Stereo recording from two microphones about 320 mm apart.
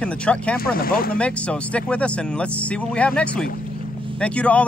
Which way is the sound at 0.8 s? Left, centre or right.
Left.